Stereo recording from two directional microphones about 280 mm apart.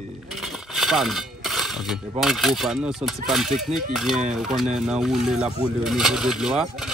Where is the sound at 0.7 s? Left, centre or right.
Centre.